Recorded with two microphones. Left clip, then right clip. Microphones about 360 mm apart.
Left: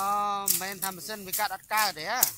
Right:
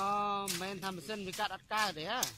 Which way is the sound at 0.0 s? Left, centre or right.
Centre.